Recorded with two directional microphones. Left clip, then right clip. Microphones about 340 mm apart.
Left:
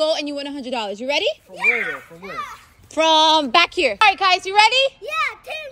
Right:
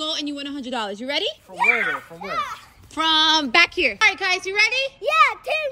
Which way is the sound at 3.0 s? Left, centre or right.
Right.